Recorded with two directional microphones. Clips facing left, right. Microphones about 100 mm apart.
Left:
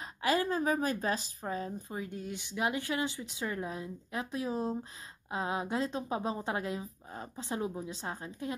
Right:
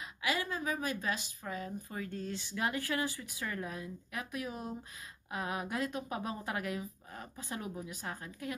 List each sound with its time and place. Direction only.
0.0 s a woman's voice: 40° left (ahead or behind)
1.9 s speech: 20° left (ahead or behind)